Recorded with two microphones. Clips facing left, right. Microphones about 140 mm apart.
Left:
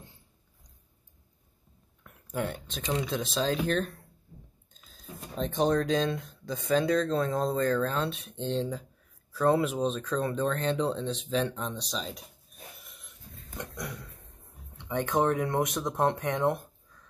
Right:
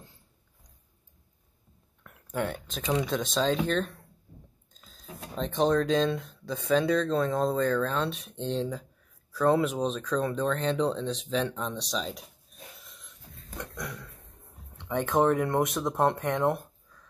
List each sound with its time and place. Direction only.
2.3 s speech: centre (ahead or behind)
5.3 s speech: 5° left (ahead or behind)
14.9 s speech: centre (ahead or behind)